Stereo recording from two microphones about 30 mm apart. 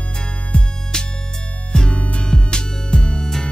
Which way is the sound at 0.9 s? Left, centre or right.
Left.